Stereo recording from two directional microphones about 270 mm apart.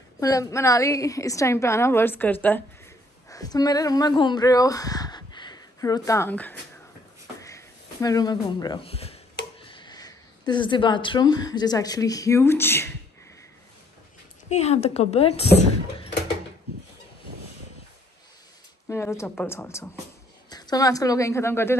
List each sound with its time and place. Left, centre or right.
0.2 s a woman's voice: centre
7.3 s a sound: centre
9.6 s speech: centre
14.5 s speech: left
18.9 s a woman's voice: centre